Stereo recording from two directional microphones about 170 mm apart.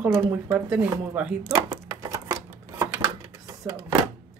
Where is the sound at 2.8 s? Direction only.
20° right (ahead or behind).